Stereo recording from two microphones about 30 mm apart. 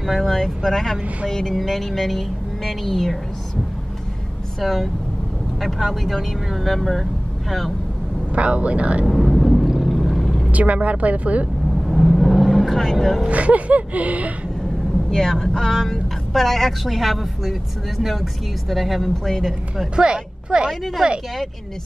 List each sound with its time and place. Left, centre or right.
0.3 s speech: centre
1.6 s speech: centre
4.6 s speech: centre
8.3 s speech: right
9.0 s vehicle: centre
10.5 s speech: right
11.8 s vehicle: centre
13.3 s speech: right
15.0 s speech: centre
19.2 s speech: centre
20.0 s a woman's voice: right